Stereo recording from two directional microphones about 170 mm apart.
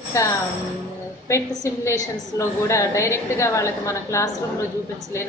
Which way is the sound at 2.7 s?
15° left (ahead or behind).